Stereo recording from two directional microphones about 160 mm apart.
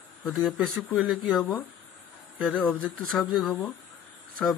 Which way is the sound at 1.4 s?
25° left (ahead or behind).